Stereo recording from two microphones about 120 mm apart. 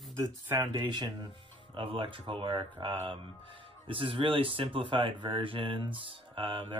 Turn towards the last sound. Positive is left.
turn(degrees=-45)  # may be behind; listen again after turning